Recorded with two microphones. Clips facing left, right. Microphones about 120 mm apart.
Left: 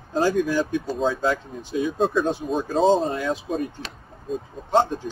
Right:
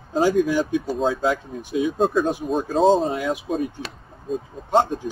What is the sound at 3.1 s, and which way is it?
Speech, 15° right (ahead or behind).